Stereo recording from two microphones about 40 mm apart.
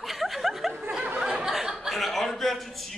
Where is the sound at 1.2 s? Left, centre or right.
Right.